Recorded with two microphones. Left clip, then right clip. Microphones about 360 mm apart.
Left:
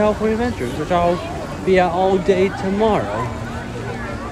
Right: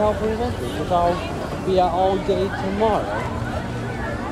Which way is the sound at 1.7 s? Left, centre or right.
Left.